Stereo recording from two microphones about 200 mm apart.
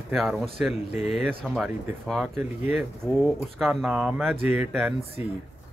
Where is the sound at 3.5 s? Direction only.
Centre (ahead or behind).